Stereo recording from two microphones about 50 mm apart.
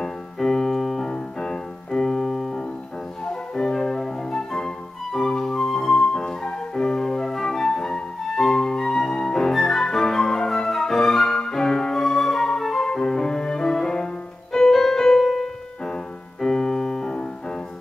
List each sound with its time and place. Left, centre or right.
0.0 s piano: centre
3.5 s flute: centre
14.7 s keyboard: centre
15.4 s piano: centre